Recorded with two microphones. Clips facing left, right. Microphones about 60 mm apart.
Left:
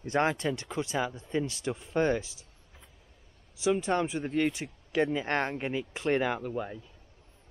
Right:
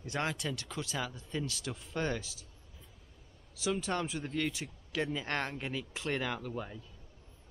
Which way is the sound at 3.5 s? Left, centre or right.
Left.